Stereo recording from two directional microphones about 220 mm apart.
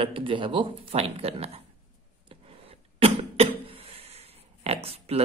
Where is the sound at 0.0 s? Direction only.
25° right (ahead or behind).